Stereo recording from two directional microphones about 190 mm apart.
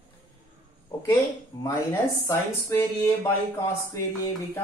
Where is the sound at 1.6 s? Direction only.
10° left (ahead or behind).